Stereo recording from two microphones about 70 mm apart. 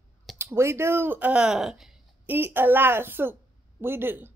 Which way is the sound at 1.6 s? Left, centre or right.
Centre.